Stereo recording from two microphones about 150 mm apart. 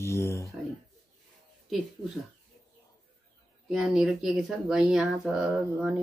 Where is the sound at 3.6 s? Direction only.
5° right (ahead or behind).